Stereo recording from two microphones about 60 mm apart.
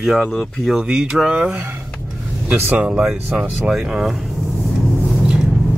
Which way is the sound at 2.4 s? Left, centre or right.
Right.